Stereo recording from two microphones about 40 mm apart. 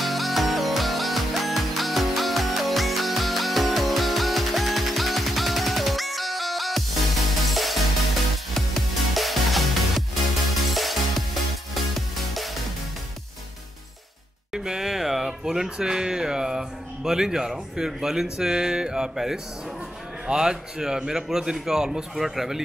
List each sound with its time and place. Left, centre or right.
0.0 s music: centre
14.5 s a man's voice: centre